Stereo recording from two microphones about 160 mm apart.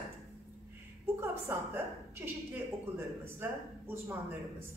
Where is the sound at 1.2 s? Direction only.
15° right (ahead or behind).